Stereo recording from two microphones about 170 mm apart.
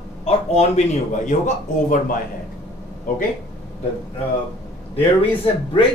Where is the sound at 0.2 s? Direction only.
40° left (ahead or behind).